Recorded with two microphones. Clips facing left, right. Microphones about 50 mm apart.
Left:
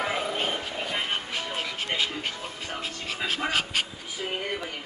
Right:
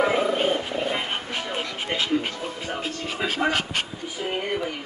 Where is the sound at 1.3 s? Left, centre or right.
Right.